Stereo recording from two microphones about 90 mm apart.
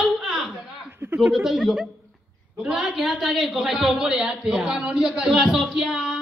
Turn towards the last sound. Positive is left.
turn(degrees=-10)  # may be behind; listen again after turning